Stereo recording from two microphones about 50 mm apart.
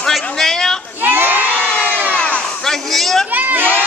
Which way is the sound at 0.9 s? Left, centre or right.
Right.